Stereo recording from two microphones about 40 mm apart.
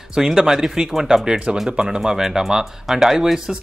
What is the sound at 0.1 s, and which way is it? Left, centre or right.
Speech, centre.